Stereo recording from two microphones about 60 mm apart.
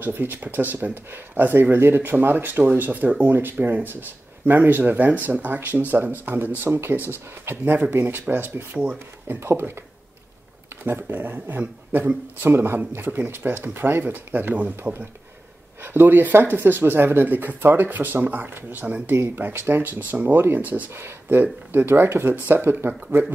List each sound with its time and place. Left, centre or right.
0.0 s speech: right
10.8 s speech: right
15.8 s speech: right
20.9 s speech: right